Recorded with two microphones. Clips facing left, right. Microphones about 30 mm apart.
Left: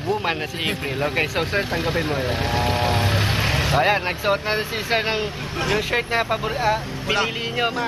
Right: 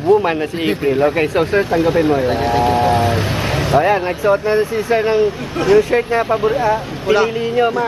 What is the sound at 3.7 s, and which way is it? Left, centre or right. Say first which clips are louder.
Speech: right 7 dB; left.